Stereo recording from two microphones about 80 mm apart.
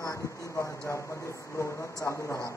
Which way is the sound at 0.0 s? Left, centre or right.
Left.